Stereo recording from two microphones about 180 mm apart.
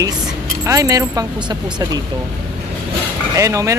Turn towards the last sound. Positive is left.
turn(degrees=-15)  # may be behind; listen again after turning